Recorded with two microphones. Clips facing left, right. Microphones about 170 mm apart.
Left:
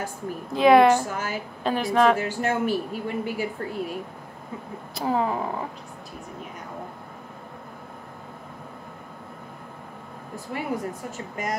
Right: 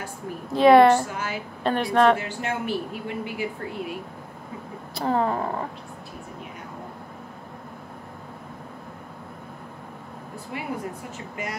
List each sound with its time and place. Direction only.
0.5 s speech: centre (ahead or behind)
1.1 s speech: 45° left (ahead or behind)
1.6 s speech: centre (ahead or behind)
2.1 s speech: 40° left (ahead or behind)
4.9 s speech: 5° left (ahead or behind)
10.5 s speech: 45° left (ahead or behind)